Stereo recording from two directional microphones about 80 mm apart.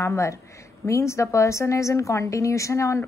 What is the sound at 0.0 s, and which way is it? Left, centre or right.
A woman's voice, left.